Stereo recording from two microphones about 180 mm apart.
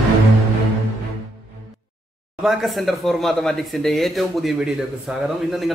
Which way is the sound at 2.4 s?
Centre (ahead or behind).